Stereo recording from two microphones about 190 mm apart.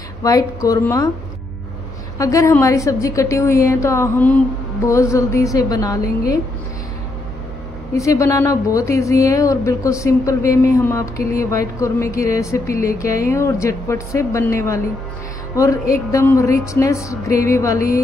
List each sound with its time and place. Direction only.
0.2 s a woman's voice: 20° left (ahead or behind)
2.1 s a woman's voice: 15° left (ahead or behind)
7.9 s a woman's voice: 15° left (ahead or behind)
15.5 s music: 15° left (ahead or behind)
15.9 s a woman's voice: 15° left (ahead or behind)